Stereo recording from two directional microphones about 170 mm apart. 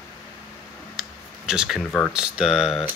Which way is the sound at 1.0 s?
5° right (ahead or behind).